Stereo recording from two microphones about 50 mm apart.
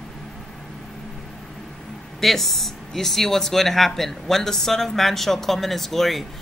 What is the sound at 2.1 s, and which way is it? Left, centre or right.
Speech, centre.